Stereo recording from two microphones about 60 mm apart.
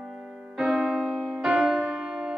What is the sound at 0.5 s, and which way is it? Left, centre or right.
Music, centre.